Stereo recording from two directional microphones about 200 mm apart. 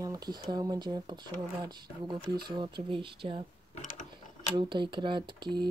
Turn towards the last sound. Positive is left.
turn(degrees=-20)  # may be behind; listen again after turning